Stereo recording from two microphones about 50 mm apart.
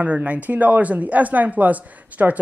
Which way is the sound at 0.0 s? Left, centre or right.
Right.